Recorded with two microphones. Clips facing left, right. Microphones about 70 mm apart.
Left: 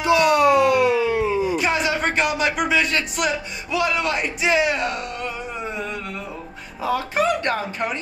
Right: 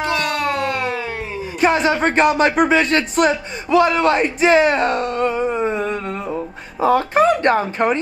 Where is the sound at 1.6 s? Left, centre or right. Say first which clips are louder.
Right 6 dB; right.